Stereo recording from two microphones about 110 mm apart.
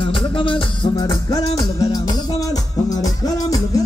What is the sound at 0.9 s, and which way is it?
Music, 35° left (ahead or behind).